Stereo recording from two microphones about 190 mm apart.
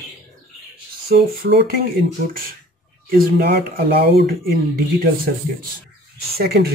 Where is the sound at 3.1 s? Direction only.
55° right (ahead or behind).